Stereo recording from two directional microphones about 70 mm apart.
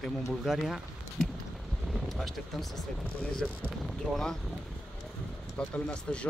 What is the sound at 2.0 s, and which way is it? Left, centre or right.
Speech, centre.